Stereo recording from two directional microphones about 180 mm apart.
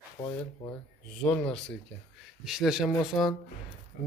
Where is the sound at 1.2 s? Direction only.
5° left (ahead or behind).